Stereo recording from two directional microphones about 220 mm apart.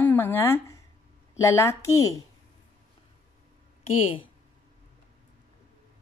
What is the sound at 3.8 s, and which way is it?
Speech, 25° left (ahead or behind).